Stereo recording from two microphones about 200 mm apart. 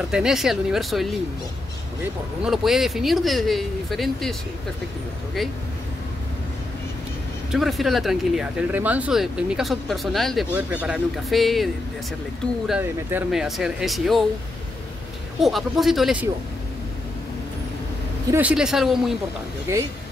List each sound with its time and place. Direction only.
0.1 s speech: 5° right (ahead or behind)
2.4 s speech: centre (ahead or behind)
7.5 s speech: centre (ahead or behind)
15.4 s speech: centre (ahead or behind)
18.3 s speech: 5° right (ahead or behind)
19.7 s speech: 15° right (ahead or behind)